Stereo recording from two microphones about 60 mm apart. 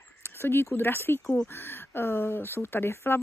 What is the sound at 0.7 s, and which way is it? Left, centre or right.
Speech, left.